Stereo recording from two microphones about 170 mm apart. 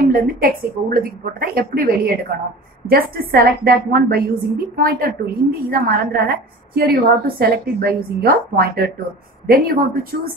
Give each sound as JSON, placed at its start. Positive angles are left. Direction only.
{"t": 0.0, "sound": "a woman's voice", "side_deg": -60}